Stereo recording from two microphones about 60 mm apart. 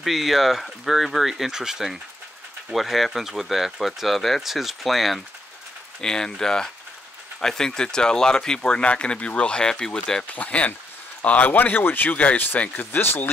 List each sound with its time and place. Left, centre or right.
0.0 s speech: centre
5.9 s speech: centre
10.2 s a man's voice: left
12.2 s a man's voice: left